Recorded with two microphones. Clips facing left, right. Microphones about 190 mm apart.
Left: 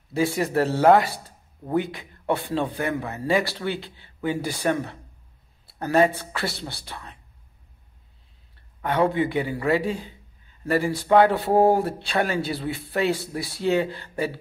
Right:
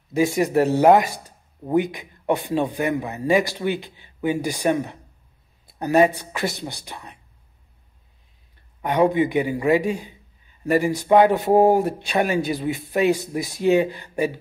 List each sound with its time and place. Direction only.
0.1 s speech: 15° right (ahead or behind)
8.8 s speech: 15° right (ahead or behind)